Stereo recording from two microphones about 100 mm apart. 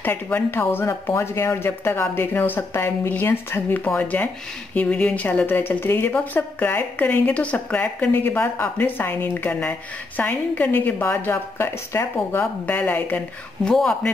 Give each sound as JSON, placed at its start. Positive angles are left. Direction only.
{"t": 0.0, "sound": "a woman's voice", "side_deg": 20}
{"t": 13.7, "sound": "a woman's voice", "side_deg": 5}